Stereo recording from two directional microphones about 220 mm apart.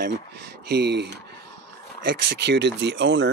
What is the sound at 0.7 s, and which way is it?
Speech, 50° right (ahead or behind).